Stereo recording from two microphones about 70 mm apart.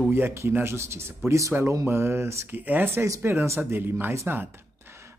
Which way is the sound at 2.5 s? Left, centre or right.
Right.